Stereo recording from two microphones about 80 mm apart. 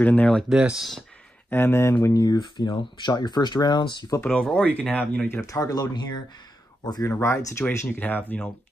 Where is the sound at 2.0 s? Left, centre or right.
Left.